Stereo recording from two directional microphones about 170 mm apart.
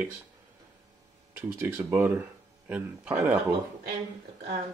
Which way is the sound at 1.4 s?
15° right (ahead or behind).